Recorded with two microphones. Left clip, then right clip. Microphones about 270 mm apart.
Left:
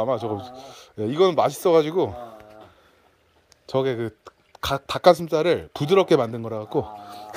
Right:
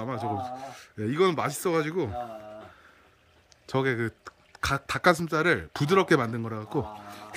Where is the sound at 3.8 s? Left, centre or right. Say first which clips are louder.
Left 1 dB; right.